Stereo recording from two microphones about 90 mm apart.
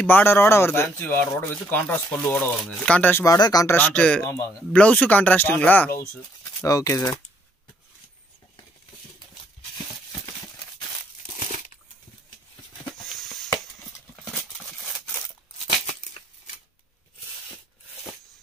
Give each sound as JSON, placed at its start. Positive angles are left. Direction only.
{"t": 0.0, "sound": "speech", "side_deg": 25}
{"t": 3.3, "sound": "speech", "side_deg": 45}
{"t": 3.6, "sound": "speech", "side_deg": 20}
{"t": 6.6, "sound": "speech", "side_deg": 35}